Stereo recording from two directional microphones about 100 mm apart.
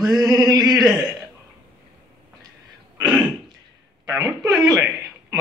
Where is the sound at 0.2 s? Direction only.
40° right (ahead or behind).